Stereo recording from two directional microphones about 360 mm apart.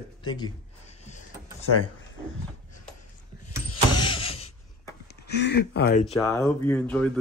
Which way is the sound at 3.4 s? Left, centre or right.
Left.